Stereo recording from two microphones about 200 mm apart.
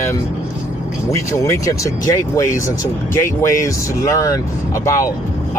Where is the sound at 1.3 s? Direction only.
15° left (ahead or behind).